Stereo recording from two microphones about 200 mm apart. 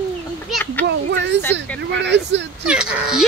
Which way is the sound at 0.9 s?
60° right (ahead or behind).